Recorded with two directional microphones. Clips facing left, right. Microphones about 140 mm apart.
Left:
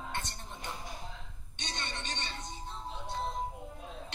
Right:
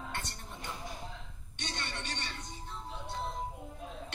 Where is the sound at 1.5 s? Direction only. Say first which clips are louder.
Even; 20° left (ahead or behind).